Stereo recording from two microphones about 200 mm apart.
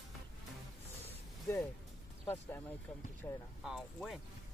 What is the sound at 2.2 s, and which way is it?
Speech, 10° left (ahead or behind).